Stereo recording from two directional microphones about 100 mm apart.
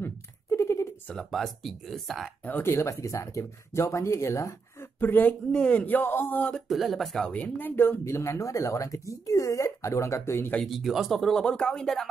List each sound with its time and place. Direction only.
0.0 s a sound: 25° left (ahead or behind)
1.0 s speech: 5° left (ahead or behind)
2.4 s speech: 20° left (ahead or behind)
5.0 s speech: 15° left (ahead or behind)
6.5 s speech: centre (ahead or behind)
7.3 s speech: 15° left (ahead or behind)
10.6 s speech: centre (ahead or behind)